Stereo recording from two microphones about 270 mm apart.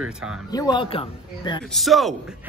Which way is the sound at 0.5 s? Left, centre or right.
Centre.